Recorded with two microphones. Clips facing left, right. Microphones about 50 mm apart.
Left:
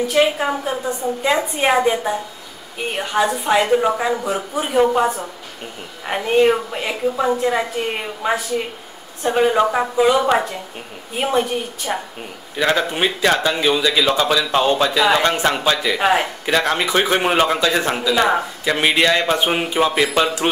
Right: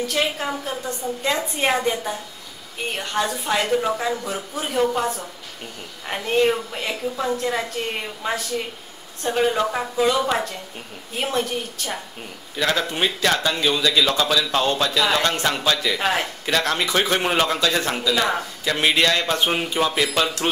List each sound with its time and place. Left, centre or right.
0.0 s a man's voice: centre